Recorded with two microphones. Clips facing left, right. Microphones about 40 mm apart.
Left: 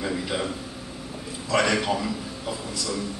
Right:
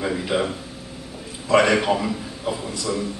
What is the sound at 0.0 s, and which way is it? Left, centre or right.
A man's voice, centre.